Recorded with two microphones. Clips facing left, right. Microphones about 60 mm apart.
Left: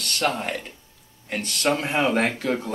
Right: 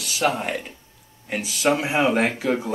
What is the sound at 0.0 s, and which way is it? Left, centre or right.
Speech, centre.